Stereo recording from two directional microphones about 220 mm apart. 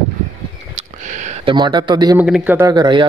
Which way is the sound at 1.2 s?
25° right (ahead or behind).